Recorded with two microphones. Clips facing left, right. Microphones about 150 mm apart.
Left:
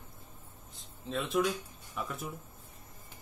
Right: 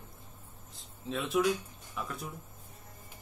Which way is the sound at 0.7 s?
Centre (ahead or behind).